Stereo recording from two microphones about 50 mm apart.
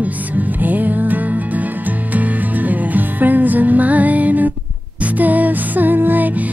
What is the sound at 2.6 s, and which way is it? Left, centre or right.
Music, right.